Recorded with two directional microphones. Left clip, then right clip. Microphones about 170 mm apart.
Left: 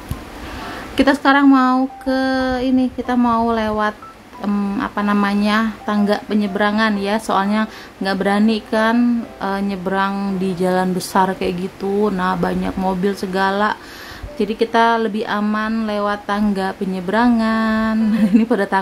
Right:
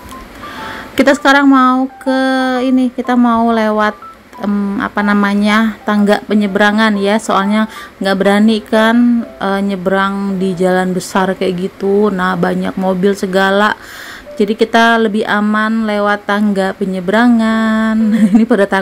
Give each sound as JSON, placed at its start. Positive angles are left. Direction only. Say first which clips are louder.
{"t": 0.9, "sound": "speech", "louder": "right 5 dB", "side_deg": -20}